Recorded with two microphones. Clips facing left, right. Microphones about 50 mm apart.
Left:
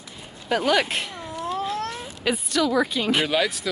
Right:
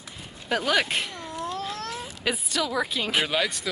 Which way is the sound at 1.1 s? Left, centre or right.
Centre.